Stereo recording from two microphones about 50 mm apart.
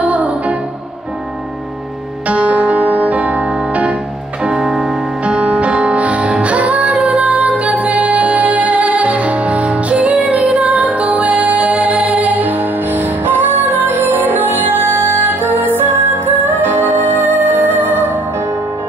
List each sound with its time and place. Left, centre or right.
0.0 s music: right
2.2 s music: right
4.4 s music: centre
5.2 s music: right